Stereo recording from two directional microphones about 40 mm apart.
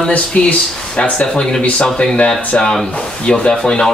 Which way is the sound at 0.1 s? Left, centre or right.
Left.